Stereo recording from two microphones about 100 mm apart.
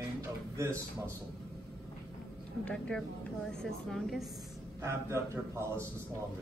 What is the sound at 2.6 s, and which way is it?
A woman's voice, 10° left (ahead or behind).